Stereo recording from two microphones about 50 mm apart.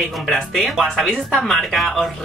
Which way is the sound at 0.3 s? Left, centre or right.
Centre.